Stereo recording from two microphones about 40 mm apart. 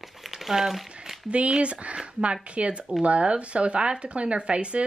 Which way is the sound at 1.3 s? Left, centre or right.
Right.